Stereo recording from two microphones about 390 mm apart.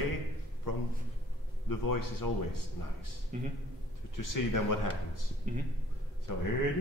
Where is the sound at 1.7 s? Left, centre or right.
Left.